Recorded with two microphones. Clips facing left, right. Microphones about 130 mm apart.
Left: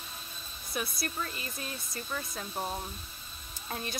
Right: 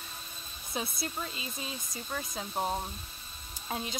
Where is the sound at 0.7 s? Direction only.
20° right (ahead or behind).